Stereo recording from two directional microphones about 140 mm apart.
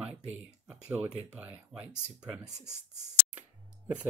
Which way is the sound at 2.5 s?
55° right (ahead or behind).